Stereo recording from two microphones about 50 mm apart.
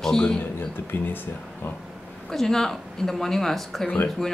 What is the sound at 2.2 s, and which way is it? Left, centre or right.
Speech, centre.